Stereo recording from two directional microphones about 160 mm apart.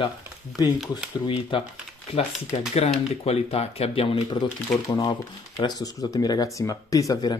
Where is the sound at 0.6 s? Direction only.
20° left (ahead or behind).